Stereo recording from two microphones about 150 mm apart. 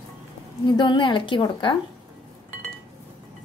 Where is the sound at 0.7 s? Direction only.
30° left (ahead or behind).